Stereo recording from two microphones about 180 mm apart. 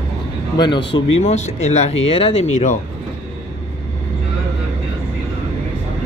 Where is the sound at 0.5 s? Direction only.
25° left (ahead or behind).